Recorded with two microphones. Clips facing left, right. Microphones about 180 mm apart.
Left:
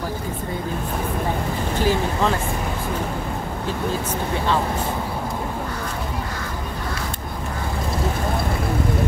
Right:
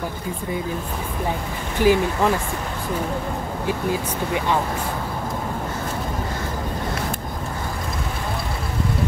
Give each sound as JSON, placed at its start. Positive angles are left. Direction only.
{"t": 1.8, "sound": "speech", "side_deg": -15}